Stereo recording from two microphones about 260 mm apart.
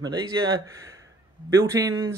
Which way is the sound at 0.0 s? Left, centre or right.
Centre.